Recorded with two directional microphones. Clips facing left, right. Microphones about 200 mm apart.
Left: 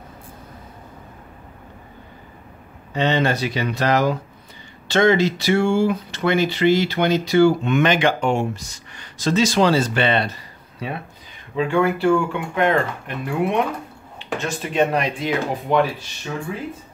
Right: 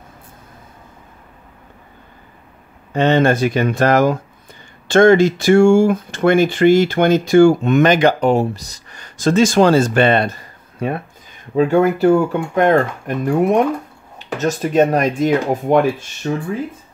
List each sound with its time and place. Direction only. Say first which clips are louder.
2.9 s speech: right 6 dB; 50° right (ahead or behind)